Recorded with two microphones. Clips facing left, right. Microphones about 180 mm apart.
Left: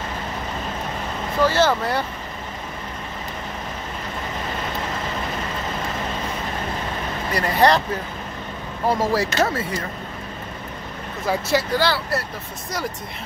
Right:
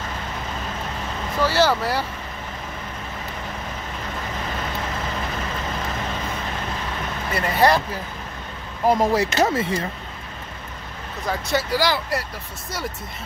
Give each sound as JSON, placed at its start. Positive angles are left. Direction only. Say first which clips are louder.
{"t": 1.5, "sound": "speech", "louder": "even", "side_deg": -10}
{"t": 7.3, "sound": "speech", "louder": "left 1 dB", "side_deg": -5}
{"t": 8.8, "sound": "speech", "louder": "right 2 dB", "side_deg": -20}
{"t": 11.2, "sound": "speech", "louder": "left 3 dB", "side_deg": 5}
{"t": 11.7, "sound": "speech", "louder": "left 1 dB", "side_deg": -10}